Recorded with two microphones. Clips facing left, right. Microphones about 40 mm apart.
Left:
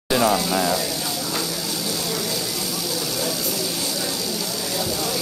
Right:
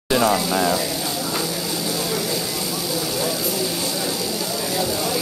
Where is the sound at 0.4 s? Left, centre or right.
Centre.